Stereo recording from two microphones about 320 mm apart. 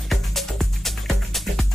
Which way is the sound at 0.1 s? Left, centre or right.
Centre.